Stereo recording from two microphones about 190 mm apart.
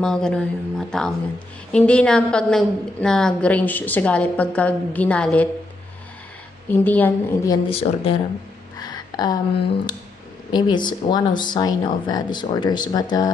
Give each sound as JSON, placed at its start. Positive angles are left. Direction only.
{"t": 0.0, "sound": "a woman's voice", "side_deg": 5}
{"t": 6.7, "sound": "a woman's voice", "side_deg": 10}
{"t": 7.7, "sound": "speech", "side_deg": 30}
{"t": 8.7, "sound": "a sound", "side_deg": 20}
{"t": 10.5, "sound": "speech", "side_deg": 25}